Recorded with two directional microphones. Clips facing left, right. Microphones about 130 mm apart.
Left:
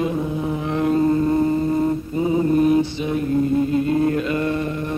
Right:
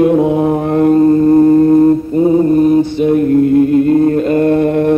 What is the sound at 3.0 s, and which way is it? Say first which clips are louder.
Mantra: right 10 dB; 55° right (ahead or behind).